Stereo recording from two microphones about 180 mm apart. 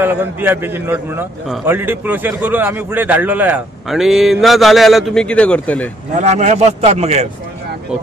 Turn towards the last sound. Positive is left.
turn(degrees=-35)  # may be behind; listen again after turning